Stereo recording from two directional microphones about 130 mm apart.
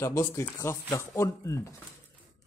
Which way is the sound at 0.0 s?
25° left (ahead or behind).